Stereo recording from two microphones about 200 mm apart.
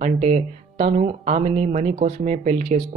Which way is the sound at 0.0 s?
35° right (ahead or behind).